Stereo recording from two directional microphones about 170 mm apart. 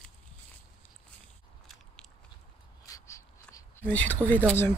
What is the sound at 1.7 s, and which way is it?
Biting, centre (ahead or behind).